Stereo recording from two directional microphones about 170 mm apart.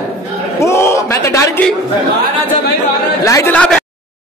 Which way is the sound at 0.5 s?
15° left (ahead or behind).